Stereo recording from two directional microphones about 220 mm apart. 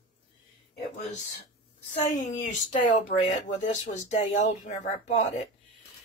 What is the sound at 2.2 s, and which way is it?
Speech, 35° left (ahead or behind).